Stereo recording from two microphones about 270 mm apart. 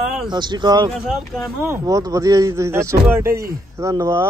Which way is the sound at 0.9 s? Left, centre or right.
Centre.